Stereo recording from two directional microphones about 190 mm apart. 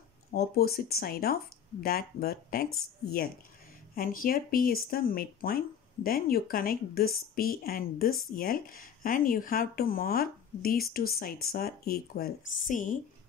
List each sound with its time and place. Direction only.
0.3 s speech: 55° left (ahead or behind)